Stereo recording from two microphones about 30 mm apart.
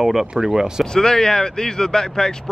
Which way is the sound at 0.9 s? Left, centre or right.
Centre.